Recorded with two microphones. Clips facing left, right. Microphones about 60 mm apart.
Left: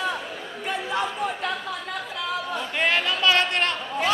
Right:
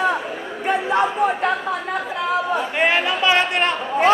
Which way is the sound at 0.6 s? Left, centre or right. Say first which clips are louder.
Right 8 dB; right.